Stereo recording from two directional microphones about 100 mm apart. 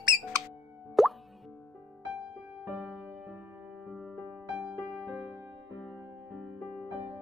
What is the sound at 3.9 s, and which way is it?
Music, centre (ahead or behind).